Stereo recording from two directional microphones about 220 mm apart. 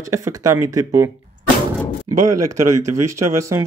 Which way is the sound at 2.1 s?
80° right.